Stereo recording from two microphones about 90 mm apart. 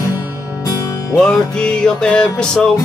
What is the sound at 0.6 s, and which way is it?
Music, 40° left (ahead or behind).